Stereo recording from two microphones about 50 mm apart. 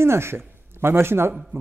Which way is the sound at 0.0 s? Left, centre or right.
Right.